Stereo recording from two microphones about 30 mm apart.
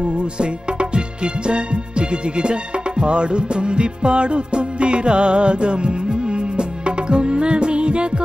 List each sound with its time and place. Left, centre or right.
0.4 s music: right